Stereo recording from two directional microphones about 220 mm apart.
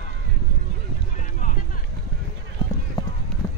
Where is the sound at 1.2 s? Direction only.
35° left (ahead or behind).